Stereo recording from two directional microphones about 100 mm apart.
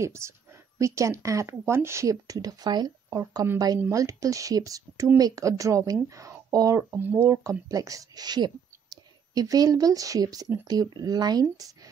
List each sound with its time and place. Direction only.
0.0 s speech: 30° right (ahead or behind)
7.0 s speech: 20° right (ahead or behind)
7.2 s a woman's voice: 35° right (ahead or behind)